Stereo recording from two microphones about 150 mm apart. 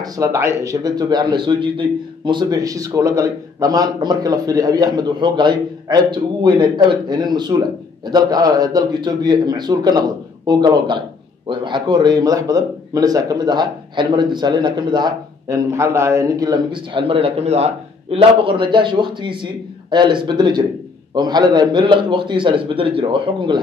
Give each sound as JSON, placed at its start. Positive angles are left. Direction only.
{"t": 0.0, "sound": "a man's voice", "side_deg": -20}